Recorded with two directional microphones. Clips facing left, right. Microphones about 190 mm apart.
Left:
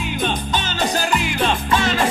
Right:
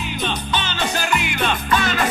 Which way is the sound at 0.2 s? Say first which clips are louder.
Left 1 dB; 45° left (ahead or behind).